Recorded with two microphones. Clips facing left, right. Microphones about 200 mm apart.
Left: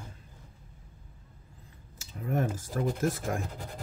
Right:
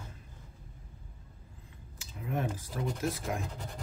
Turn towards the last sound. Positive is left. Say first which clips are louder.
# left 4 dB
turn(degrees=45)  # may be behind; listen again after turning